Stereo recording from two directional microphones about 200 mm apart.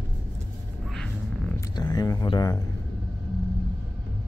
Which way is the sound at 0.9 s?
5° left (ahead or behind).